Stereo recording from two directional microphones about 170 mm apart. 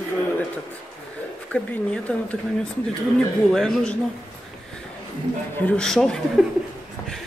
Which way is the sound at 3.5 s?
5° left (ahead or behind).